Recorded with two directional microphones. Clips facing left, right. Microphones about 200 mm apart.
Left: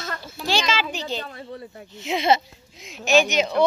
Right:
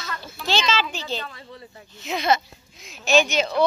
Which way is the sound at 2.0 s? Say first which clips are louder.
Left 2 dB; 25° left (ahead or behind).